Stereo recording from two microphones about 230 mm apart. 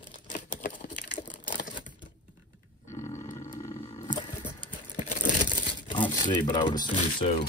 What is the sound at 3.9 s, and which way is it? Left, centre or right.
Wild animals, left.